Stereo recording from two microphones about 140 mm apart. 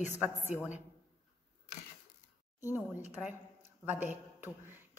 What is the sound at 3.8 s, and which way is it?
Speech, 10° right (ahead or behind).